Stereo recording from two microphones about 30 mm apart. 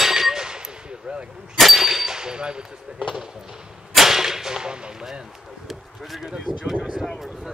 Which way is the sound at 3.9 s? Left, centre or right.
Centre.